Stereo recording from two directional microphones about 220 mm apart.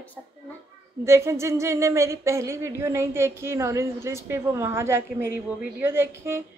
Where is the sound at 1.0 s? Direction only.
10° right (ahead or behind).